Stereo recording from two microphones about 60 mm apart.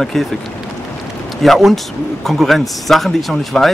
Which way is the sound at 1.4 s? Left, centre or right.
Centre.